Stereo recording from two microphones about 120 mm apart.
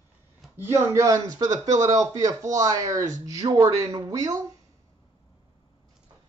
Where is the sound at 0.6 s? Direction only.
20° right (ahead or behind).